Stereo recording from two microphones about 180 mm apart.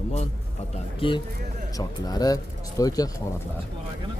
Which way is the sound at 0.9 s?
30° left (ahead or behind).